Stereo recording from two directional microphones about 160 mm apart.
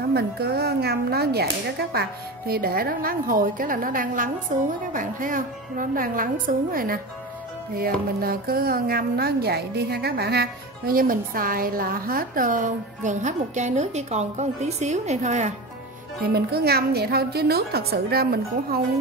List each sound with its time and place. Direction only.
0.1 s a woman's voice: 85° right; by 15.5 s 45° right (ahead or behind)
16.3 s a woman's voice: 80° right